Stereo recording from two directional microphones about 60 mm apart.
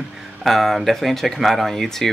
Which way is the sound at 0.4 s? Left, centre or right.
Centre.